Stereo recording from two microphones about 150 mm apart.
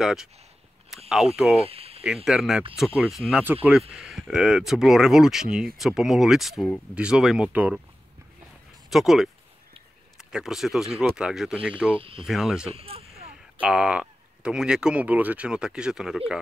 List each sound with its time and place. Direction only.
0.0 s speech: centre (ahead or behind)
1.6 s cricket: 40° right (ahead or behind)
2.2 s speech: centre (ahead or behind)
8.9 s speech: centre (ahead or behind)
12.0 s speech: 35° right (ahead or behind)
12.3 s speech: 5° right (ahead or behind)
12.7 s speech: 40° right (ahead or behind)
13.6 s speech: 5° right (ahead or behind)